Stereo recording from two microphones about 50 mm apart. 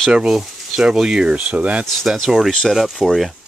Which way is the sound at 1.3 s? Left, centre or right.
Right.